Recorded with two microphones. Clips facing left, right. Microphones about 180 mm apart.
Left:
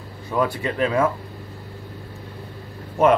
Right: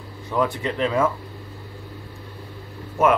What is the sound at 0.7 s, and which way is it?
Speech, 15° left (ahead or behind).